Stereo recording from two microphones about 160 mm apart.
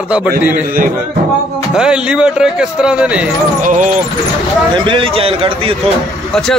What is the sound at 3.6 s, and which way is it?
Speech, 55° right (ahead or behind).